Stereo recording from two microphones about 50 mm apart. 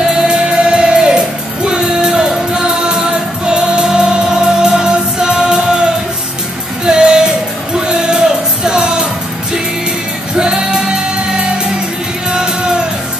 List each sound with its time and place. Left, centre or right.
0.3 s music: centre
6.9 s music: centre
10.3 s music: centre